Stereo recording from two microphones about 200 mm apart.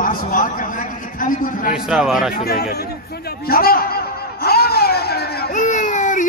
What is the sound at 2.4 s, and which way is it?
Speech, 50° left (ahead or behind).